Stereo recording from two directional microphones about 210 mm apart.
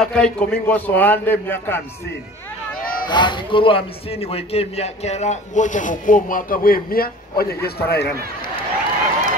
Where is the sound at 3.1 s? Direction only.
20° left (ahead or behind); by 7.7 s 45° left (ahead or behind).